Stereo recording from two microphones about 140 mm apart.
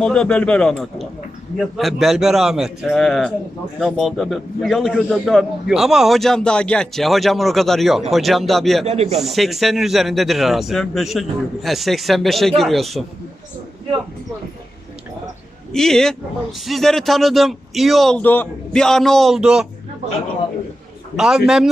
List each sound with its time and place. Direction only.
0.0 s a man's voice: 5° left (ahead or behind)
8.8 s speech: 50° right (ahead or behind)
9.2 s a man's voice: centre (ahead or behind)
15.7 s a man's voice: 5° left (ahead or behind)
18.2 s a man's voice: 15° left (ahead or behind); by 19.7 s 5° right (ahead or behind)
21.2 s a man's voice: 5° right (ahead or behind)